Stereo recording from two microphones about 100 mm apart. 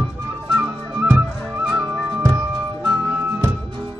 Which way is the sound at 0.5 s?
15° right (ahead or behind).